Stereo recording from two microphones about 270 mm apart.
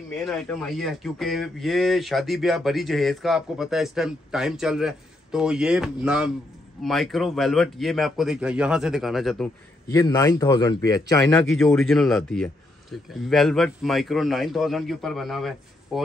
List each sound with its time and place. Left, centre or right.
0.2 s speech: centre
9.9 s a man's voice: centre